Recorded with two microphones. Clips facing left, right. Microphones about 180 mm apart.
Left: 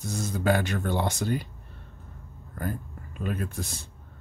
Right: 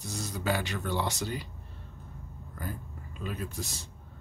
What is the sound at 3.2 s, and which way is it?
Speech, 55° left (ahead or behind).